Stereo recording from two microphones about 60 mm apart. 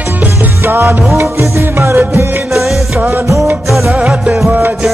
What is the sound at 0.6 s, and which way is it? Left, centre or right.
Music, right.